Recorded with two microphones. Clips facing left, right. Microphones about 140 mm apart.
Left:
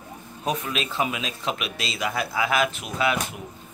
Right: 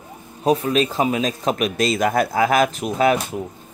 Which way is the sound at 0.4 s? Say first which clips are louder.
Right 10 dB; 35° right (ahead or behind).